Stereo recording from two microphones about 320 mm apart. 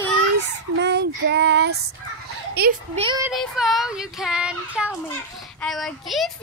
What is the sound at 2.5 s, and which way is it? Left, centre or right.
Speech, right.